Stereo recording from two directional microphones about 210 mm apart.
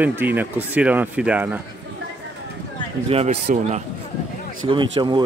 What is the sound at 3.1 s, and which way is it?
Speech, 30° right (ahead or behind).